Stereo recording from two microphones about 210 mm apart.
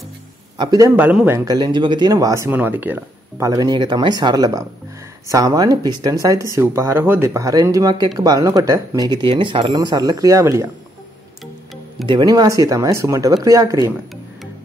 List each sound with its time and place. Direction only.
0.6 s speech: 15° right (ahead or behind)
12.1 s speech: 20° right (ahead or behind)